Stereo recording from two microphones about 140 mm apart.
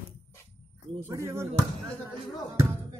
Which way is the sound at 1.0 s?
20° right (ahead or behind).